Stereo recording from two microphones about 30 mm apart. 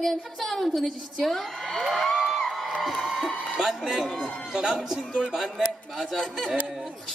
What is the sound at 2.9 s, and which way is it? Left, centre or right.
A man's voice, centre.